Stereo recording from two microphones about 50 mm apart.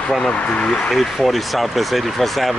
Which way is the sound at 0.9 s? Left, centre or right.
Centre.